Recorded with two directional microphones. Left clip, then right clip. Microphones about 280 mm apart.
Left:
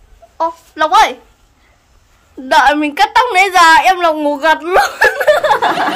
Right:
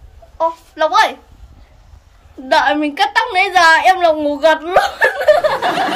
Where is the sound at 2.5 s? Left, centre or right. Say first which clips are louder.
Left 3 dB; centre.